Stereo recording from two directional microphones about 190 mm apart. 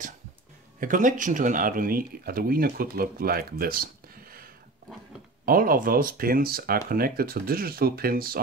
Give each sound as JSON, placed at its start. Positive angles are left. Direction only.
{"t": 0.7, "sound": "speech", "side_deg": -45}